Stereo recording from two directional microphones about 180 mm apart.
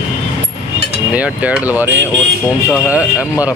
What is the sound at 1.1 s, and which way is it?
Speech, 10° right (ahead or behind).